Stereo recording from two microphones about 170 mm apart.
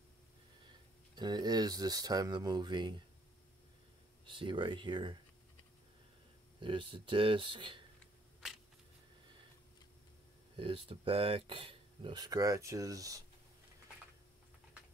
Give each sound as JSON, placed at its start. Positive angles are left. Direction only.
{"t": 1.1, "sound": "speech", "side_deg": -25}
{"t": 4.3, "sound": "speech", "side_deg": -30}
{"t": 6.6, "sound": "speech", "side_deg": -30}
{"t": 10.5, "sound": "speech", "side_deg": -30}